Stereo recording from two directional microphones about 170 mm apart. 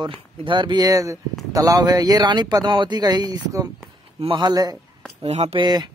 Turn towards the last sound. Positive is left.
turn(degrees=-25)  # may be behind; listen again after turning